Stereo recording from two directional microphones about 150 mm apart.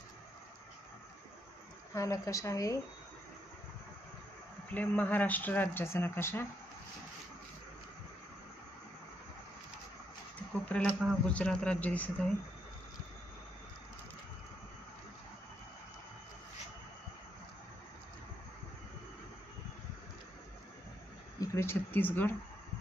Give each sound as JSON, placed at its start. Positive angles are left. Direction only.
{"t": 2.0, "sound": "speech", "side_deg": 20}
{"t": 4.6, "sound": "speech", "side_deg": 10}
{"t": 10.6, "sound": "speech", "side_deg": 10}
{"t": 21.4, "sound": "speech", "side_deg": 15}